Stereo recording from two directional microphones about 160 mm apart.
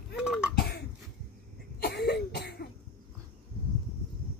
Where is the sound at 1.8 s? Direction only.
80° left.